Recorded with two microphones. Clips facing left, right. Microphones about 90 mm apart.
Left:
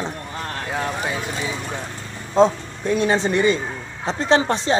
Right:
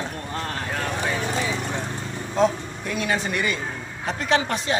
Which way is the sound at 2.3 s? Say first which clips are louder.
Left 5 dB; 30° left (ahead or behind).